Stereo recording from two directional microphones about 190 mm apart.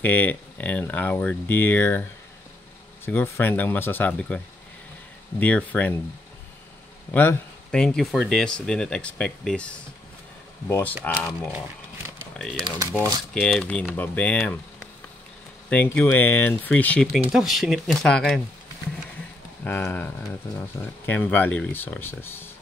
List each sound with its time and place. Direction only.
0.0 s speech: 10° left (ahead or behind)
3.1 s speech: 10° left (ahead or behind)
5.4 s speech: 10° left (ahead or behind)
7.1 s speech: 10° left (ahead or behind)
12.6 s speech: 20° right (ahead or behind)
13.3 s speech: 5° left (ahead or behind)
16.0 s speech: 10° left (ahead or behind)
19.6 s speech: 10° left (ahead or behind)